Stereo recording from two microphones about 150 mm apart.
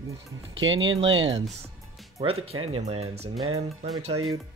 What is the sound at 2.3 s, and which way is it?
Speech, 40° right (ahead or behind).